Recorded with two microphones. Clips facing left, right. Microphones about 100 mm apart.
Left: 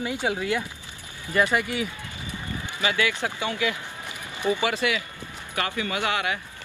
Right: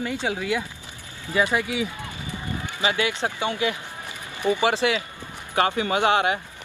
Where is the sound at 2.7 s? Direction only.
20° right (ahead or behind).